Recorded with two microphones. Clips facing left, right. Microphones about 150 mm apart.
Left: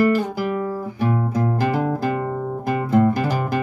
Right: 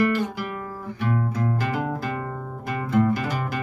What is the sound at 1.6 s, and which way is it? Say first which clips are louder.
Music: left 6 dB; 35° left (ahead or behind).